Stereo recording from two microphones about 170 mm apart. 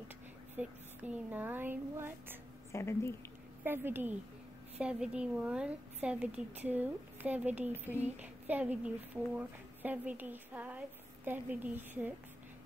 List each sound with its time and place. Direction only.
0.6 s a woman's voice: 10° right (ahead or behind)
2.7 s a woman's voice: 15° left (ahead or behind)
3.6 s a woman's voice: 10° right (ahead or behind)